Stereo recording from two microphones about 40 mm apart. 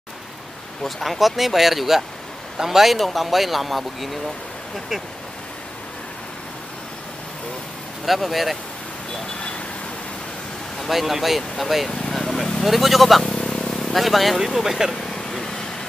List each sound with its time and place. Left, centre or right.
0.8 s speech: centre
8.0 s speech: centre
10.9 s speech: centre
12.1 s vehicle: centre
12.6 s speech: centre
13.4 s vehicle: left
13.9 s speech: centre
15.0 s vehicle: centre